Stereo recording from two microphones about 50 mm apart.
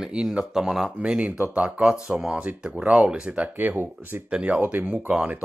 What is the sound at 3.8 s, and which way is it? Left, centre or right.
Speech, right.